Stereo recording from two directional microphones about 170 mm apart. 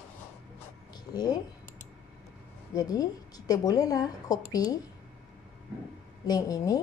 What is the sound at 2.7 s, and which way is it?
A woman's voice, 20° left (ahead or behind).